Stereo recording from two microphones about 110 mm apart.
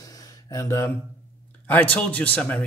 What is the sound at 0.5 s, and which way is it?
Speech, 30° left (ahead or behind).